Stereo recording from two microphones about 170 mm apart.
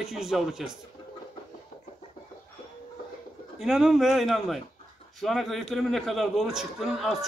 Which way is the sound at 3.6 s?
Centre (ahead or behind).